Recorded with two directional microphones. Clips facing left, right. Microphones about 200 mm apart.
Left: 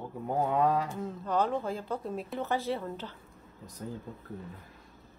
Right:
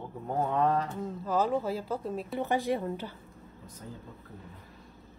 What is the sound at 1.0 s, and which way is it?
A woman's voice, 5° right (ahead or behind).